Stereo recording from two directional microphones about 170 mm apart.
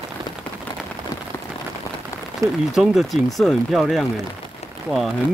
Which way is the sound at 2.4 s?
20° right (ahead or behind).